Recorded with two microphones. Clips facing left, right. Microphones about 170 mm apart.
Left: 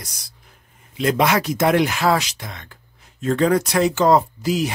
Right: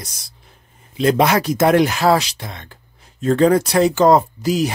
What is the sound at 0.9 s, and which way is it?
Speech, 35° right (ahead or behind).